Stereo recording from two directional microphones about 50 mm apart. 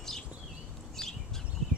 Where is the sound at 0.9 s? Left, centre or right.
Centre.